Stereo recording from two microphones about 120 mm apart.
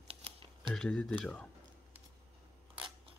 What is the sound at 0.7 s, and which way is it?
Speech, 5° left (ahead or behind).